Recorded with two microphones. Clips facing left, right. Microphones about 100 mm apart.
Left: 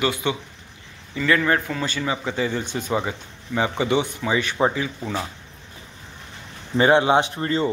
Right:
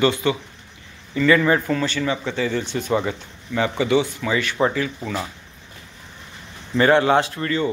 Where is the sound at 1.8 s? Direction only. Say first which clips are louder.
Right 3 dB; 15° left (ahead or behind).